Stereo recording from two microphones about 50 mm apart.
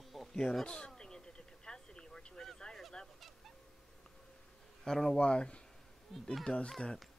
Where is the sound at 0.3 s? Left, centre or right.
Centre.